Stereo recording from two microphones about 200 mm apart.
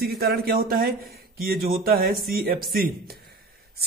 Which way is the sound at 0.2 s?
50° right (ahead or behind).